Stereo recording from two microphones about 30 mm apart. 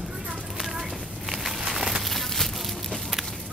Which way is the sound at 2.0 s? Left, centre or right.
Centre.